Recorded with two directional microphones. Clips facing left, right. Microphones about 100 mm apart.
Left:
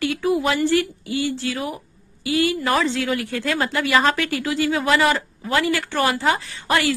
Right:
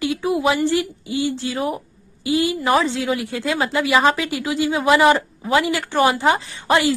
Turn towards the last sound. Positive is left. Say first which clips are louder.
# right 3 dB
turn(degrees=-20)  # may be behind; listen again after turning